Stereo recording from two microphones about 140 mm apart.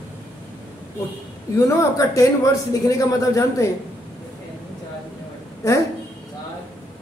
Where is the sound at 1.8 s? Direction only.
25° left (ahead or behind).